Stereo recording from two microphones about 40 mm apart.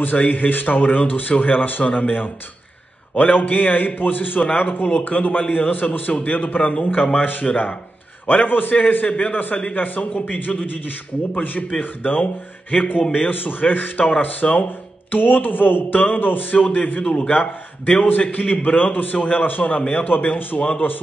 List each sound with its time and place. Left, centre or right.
0.0 s a man's voice: left
10.5 s a man's voice: centre
11.4 s a man's voice: left
13.3 s a man's voice: left
15.0 s speech: left
15.9 s a man's voice: left
20.3 s a man's voice: left